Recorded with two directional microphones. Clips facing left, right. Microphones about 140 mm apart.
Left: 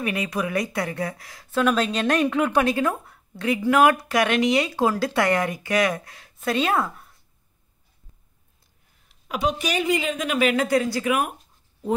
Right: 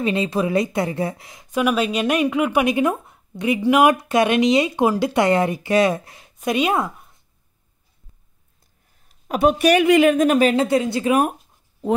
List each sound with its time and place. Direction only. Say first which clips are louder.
0.0 s a woman's voice: right 5 dB; 25° right (ahead or behind)
9.1 s a man's voice: right 7 dB; 45° right (ahead or behind); by 10.1 s 65° right (ahead or behind)
10.1 s speech: right 7 dB; 45° right (ahead or behind)
10.5 s a woman's voice: right 3 dB; 25° right (ahead or behind)